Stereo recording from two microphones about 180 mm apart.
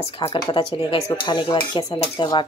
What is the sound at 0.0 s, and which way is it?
Cutlery, 30° left (ahead or behind).